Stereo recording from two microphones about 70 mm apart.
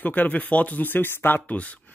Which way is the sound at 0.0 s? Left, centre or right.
Left.